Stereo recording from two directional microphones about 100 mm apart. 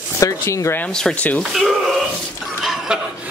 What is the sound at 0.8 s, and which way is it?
Speech, 10° left (ahead or behind).